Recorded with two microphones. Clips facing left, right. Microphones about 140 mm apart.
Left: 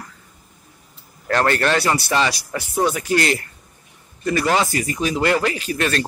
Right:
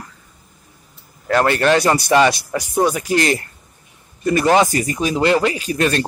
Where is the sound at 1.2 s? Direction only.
10° right (ahead or behind).